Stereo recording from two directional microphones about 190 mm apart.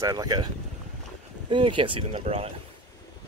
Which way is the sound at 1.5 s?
25° right (ahead or behind).